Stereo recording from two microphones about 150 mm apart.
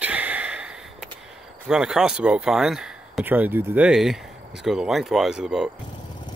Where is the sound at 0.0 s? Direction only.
10° right (ahead or behind).